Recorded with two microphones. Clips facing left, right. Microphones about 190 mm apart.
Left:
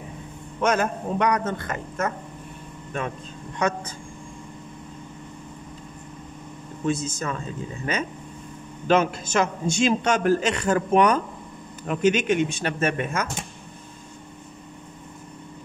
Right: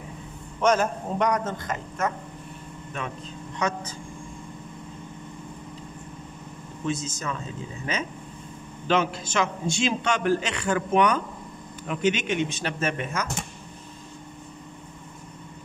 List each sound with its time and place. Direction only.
0.6 s a man's voice: 60° left (ahead or behind)
3.5 s speech: 55° left (ahead or behind)
6.9 s a man's voice: 55° left (ahead or behind)